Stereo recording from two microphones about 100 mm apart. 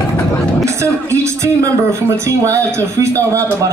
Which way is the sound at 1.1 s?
30° right (ahead or behind).